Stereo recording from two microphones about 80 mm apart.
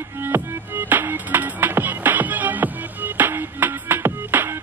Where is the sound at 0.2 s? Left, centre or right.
Right.